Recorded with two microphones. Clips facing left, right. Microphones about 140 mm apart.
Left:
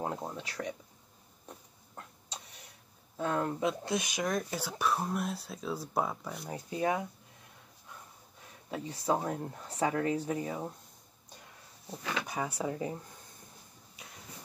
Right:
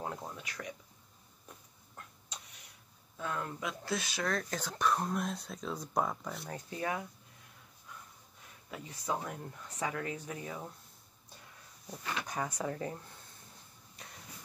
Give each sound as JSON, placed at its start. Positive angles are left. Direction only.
{"t": 0.0, "sound": "speech", "side_deg": 25}
{"t": 1.5, "sound": "a sound", "side_deg": 30}
{"t": 3.2, "sound": "speech", "side_deg": 35}
{"t": 6.5, "sound": "speech", "side_deg": 20}
{"t": 8.6, "sound": "speech", "side_deg": 30}
{"t": 12.3, "sound": "speech", "side_deg": 10}
{"t": 14.0, "sound": "a sound", "side_deg": 5}